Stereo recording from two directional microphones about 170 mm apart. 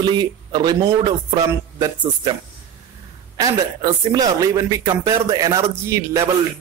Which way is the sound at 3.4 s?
20° right (ahead or behind).